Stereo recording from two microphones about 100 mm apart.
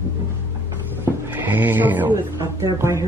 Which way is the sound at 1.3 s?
15° right (ahead or behind).